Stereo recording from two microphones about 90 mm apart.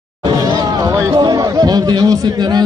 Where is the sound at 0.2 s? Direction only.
45° right (ahead or behind).